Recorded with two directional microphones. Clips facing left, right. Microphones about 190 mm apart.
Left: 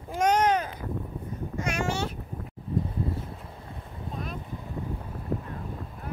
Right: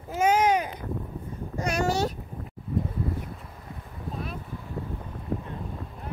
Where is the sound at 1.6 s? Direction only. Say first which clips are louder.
Right 4 dB; 35° right (ahead or behind).